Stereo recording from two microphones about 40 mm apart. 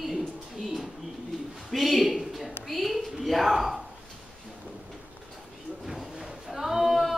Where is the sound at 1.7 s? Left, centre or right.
Centre.